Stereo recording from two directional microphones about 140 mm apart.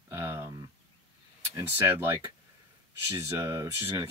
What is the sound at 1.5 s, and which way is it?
Speech, 15° right (ahead or behind).